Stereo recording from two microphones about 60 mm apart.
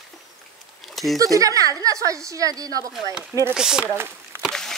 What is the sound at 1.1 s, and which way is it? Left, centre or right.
A woman's voice, right.